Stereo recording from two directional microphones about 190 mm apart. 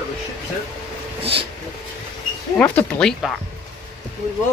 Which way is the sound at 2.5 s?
10° left (ahead or behind).